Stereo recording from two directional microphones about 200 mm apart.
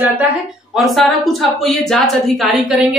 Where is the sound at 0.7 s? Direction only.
Centre (ahead or behind).